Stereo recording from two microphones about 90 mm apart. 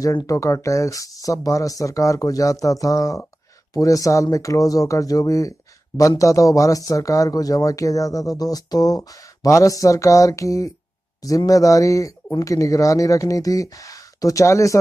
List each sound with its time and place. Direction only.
0.3 s speech: 35° left (ahead or behind)